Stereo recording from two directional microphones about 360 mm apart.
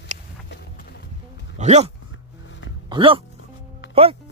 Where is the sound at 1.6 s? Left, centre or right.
Centre.